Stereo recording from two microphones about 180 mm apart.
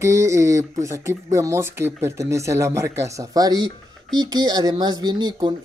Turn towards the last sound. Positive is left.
turn(degrees=-25)  # may be behind; listen again after turning